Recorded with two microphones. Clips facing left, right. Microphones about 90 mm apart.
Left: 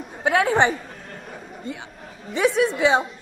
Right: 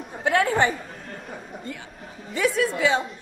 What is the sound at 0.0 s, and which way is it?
Chatter, 10° left (ahead or behind).